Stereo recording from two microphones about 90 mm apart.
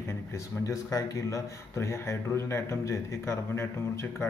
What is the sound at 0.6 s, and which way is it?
A man's voice, 40° left (ahead or behind).